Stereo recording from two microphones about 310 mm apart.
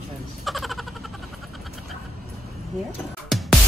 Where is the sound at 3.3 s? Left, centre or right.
Centre.